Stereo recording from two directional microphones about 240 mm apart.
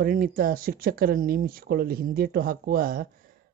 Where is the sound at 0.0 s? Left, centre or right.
Right.